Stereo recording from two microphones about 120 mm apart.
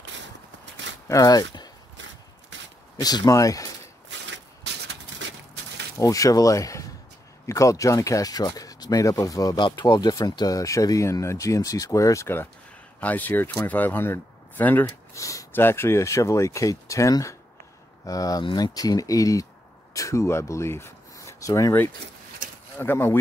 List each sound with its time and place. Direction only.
1.0 s speech: 30° left (ahead or behind)
3.0 s speech: 35° left (ahead or behind)
5.9 s speech: 25° left (ahead or behind)
15.1 s speech: 25° left (ahead or behind)
18.4 s speech: 45° left (ahead or behind)
18.8 s speech: 30° left (ahead or behind)